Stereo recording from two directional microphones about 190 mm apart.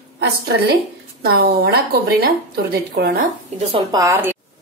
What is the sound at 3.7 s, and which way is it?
Speech, 20° right (ahead or behind).